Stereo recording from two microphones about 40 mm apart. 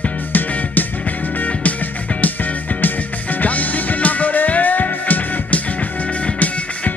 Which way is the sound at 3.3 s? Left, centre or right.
Left.